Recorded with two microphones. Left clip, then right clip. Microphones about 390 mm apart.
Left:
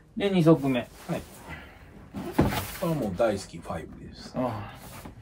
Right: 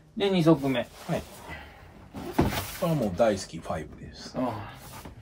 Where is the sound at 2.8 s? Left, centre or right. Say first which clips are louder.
Right 2 dB; right.